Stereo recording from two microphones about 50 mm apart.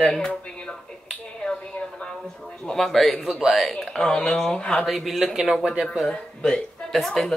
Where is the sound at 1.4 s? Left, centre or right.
Left.